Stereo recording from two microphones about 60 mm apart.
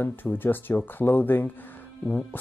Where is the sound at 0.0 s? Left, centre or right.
Left.